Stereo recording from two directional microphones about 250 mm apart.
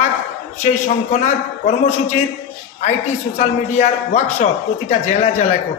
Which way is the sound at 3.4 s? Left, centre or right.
Left.